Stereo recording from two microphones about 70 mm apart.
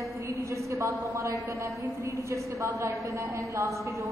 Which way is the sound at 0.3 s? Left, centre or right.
Right.